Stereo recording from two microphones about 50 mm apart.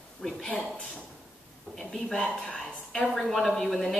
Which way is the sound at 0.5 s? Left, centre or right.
Left.